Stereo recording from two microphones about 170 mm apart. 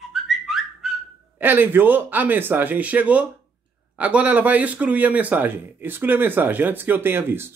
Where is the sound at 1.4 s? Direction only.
10° right (ahead or behind).